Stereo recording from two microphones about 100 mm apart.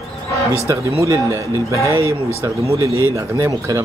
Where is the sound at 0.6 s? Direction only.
30° right (ahead or behind).